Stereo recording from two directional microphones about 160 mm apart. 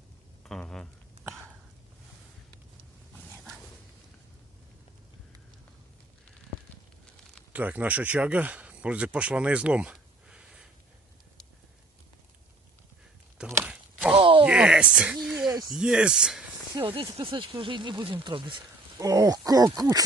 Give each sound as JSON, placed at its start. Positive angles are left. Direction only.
{"t": 0.5, "sound": "a sound", "side_deg": 5}
{"t": 7.5, "sound": "speech", "side_deg": -10}
{"t": 13.5, "sound": "chopping", "side_deg": -15}
{"t": 14.1, "sound": "groan", "side_deg": -35}
{"t": 14.4, "sound": "a sound", "side_deg": -5}
{"t": 15.7, "sound": "speech", "side_deg": -5}
{"t": 16.7, "sound": "speech", "side_deg": -30}